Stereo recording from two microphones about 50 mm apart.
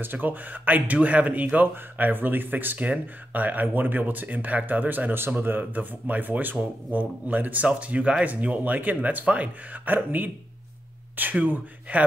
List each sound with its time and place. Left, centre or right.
0.0 s speech: right
11.4 s speech: right